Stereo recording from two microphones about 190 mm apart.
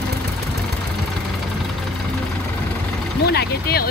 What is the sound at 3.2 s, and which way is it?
Speech, 55° left (ahead or behind).